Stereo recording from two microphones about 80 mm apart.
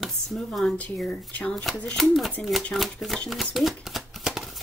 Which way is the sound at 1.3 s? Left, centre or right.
Centre.